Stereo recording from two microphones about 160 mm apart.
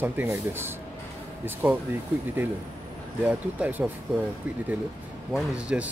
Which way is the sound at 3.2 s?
10° right (ahead or behind).